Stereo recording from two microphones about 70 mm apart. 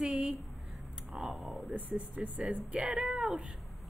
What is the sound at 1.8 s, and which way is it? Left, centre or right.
Speech, right.